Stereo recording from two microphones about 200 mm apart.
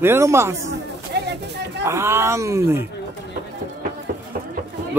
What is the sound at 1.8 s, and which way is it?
A man's voice, 15° right (ahead or behind).